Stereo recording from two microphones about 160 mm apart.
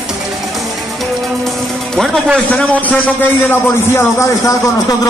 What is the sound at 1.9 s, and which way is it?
A man's voice, centre (ahead or behind).